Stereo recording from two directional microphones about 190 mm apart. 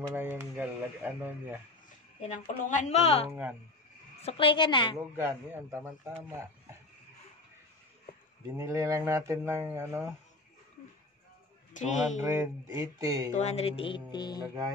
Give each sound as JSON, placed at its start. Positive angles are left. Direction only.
{"t": 0.1, "sound": "a sound", "side_deg": -10}
{"t": 2.2, "sound": "speech", "side_deg": 40}
{"t": 3.3, "sound": "speech", "side_deg": -10}
{"t": 4.2, "sound": "speech", "side_deg": 30}
{"t": 4.9, "sound": "speech", "side_deg": -10}
{"t": 8.5, "sound": "speech", "side_deg": -15}
{"t": 11.7, "sound": "a sound", "side_deg": 40}
{"t": 12.2, "sound": "speech", "side_deg": -15}
{"t": 13.3, "sound": "speech", "side_deg": 35}